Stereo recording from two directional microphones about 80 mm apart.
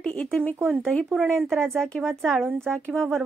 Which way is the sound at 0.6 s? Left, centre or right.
Right.